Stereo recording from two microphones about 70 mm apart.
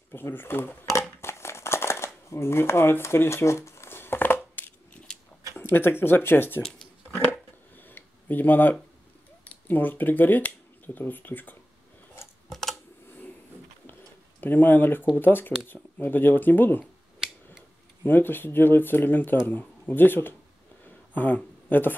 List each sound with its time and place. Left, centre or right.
0.1 s speech: left
1.2 s a sound: left
2.2 s shuffling cards: left
5.5 s speech: left
7.7 s a sound: left
9.4 s speech: left
12.4 s typing: centre
14.4 s speech: left
18.0 s speech: left
20.8 s a sound: left
21.6 s speech: left